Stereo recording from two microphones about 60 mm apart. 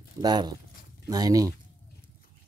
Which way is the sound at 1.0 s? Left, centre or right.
Right.